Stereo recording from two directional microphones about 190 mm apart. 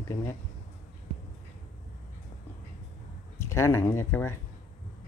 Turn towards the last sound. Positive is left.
turn(degrees=10)  # may be behind; listen again after turning